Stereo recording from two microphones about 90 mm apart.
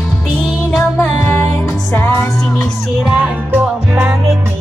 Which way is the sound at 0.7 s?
30° left (ahead or behind).